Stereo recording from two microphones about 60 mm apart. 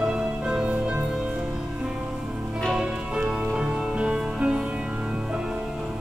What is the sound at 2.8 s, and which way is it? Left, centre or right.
Music, centre.